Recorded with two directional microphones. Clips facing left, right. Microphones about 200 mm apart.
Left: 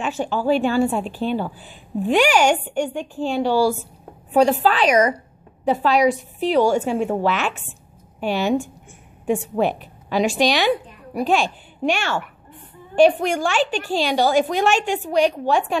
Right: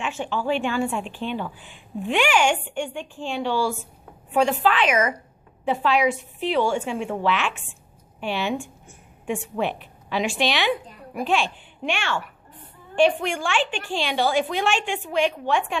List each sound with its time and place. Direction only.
0.0 s a woman's voice: 40° left (ahead or behind)